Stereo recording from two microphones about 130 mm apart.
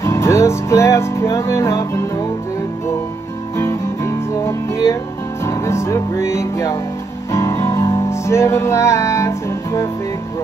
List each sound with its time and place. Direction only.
0.0 s music: 20° left (ahead or behind)
3.5 s music: 20° left (ahead or behind)